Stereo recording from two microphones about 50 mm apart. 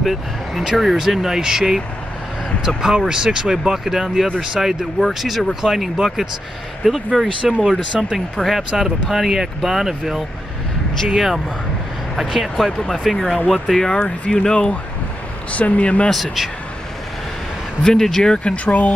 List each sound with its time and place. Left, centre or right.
0.0 s speech: centre
2.8 s speech: centre
15.5 s speech: left
16.1 s speech: centre
17.8 s speech: centre
18.7 s speech: left